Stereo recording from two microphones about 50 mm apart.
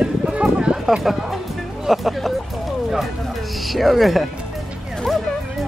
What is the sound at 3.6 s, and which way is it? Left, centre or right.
Speech, centre.